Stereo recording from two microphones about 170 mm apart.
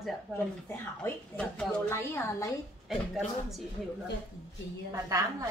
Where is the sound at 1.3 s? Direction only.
10° left (ahead or behind).